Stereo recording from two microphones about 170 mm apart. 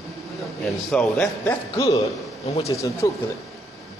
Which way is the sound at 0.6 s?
5° left (ahead or behind).